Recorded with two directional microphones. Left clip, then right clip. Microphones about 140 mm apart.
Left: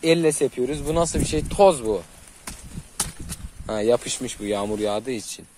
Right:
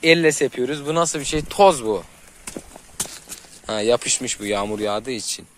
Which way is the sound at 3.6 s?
20° left (ahead or behind).